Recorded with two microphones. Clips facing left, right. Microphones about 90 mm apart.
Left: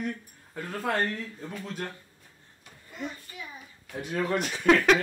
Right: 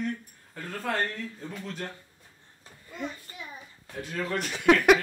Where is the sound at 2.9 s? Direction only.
10° left (ahead or behind).